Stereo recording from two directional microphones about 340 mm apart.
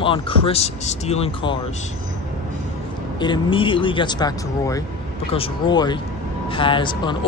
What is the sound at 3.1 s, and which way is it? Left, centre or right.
Speech, centre.